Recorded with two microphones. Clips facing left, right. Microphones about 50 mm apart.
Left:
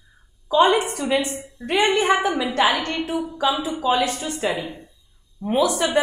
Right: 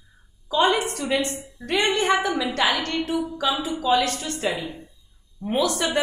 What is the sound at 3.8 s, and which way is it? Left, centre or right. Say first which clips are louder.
A woman's voice: even; centre.